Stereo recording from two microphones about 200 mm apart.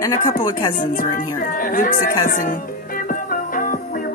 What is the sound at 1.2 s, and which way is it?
Speech, 40° left (ahead or behind).